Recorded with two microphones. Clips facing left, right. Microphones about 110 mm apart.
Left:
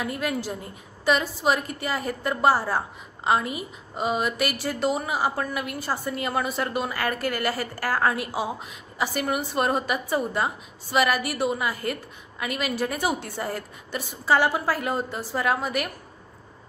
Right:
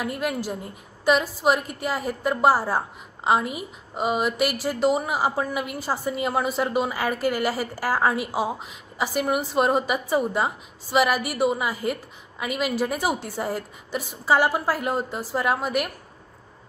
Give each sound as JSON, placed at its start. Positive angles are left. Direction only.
{"t": 0.5, "sound": "a woman's voice", "side_deg": -10}
{"t": 3.9, "sound": "a woman's voice", "side_deg": -15}